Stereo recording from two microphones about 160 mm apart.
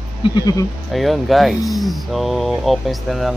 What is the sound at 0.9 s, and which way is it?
Speech, centre (ahead or behind).